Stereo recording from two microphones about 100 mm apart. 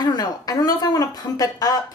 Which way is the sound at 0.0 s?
40° left (ahead or behind).